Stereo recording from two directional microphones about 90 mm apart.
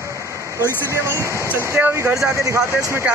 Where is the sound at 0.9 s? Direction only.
30° right (ahead or behind).